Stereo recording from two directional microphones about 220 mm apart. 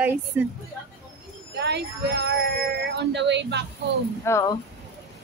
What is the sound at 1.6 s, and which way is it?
Speech, 50° right (ahead or behind).